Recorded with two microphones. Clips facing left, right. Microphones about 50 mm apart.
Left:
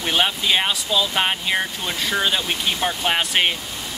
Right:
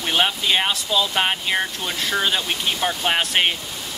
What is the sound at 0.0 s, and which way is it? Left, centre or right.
Speech, centre.